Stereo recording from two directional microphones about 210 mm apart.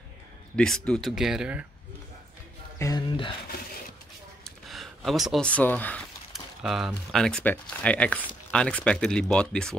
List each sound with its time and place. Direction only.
0.6 s speech: 5° left (ahead or behind)
2.8 s speech: 20° left (ahead or behind)
4.5 s speech: centre (ahead or behind)